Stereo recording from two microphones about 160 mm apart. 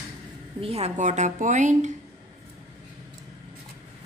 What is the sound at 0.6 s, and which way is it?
A woman's voice, 40° right (ahead or behind).